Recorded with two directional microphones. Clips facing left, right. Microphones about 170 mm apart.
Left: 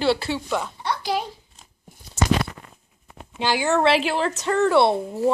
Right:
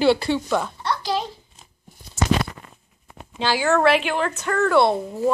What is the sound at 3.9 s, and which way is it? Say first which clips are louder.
A woman's voice: even; 35° left (ahead or behind).